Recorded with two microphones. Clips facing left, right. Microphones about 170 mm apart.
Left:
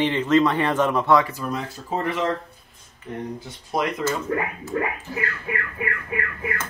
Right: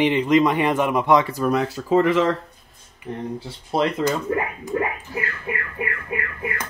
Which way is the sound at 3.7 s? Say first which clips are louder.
Right 4 dB; 25° right (ahead or behind).